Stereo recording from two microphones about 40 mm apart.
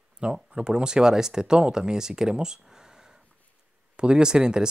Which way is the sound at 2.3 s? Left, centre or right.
Centre.